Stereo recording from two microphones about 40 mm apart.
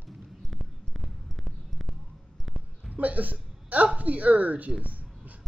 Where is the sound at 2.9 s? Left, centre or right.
Right.